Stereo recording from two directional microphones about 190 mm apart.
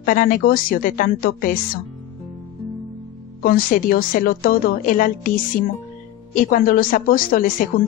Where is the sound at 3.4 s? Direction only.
50° left (ahead or behind).